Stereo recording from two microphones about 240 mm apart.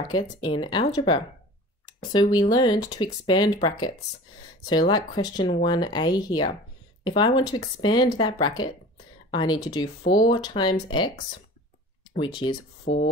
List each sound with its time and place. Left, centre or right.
0.1 s speech: centre
2.3 s speech: centre
10.0 s speech: left
12.2 s speech: centre
12.8 s speech: left